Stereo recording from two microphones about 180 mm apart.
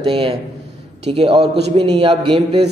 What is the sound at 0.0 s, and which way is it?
Speech, 30° right (ahead or behind).